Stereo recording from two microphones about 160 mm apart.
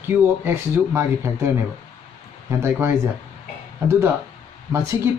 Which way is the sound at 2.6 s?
15° right (ahead or behind).